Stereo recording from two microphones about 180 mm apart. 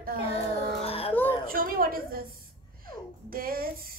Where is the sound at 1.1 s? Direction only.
10° left (ahead or behind).